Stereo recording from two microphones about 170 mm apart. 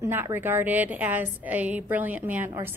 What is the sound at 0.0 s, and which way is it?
A woman's voice, 15° right (ahead or behind).